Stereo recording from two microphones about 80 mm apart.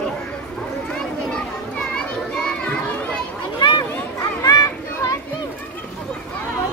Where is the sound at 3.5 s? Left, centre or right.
Left.